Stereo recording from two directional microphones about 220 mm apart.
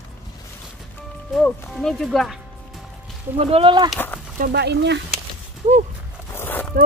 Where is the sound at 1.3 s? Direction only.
5° left (ahead or behind).